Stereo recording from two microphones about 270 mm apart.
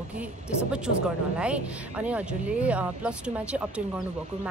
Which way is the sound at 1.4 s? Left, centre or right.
Centre.